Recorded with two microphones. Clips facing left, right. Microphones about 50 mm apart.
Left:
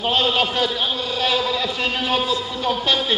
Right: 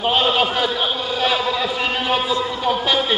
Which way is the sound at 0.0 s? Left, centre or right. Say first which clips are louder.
Right 2 dB; centre.